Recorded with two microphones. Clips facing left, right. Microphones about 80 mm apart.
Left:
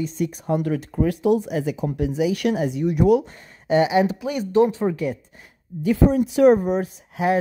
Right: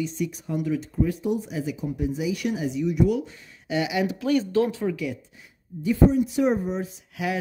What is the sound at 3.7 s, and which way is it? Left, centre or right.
Speech, left.